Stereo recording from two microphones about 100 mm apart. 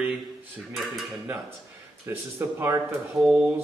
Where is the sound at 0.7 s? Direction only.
Centre (ahead or behind).